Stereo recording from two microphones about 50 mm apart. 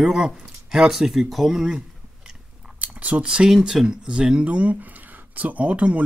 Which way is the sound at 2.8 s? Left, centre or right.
Right.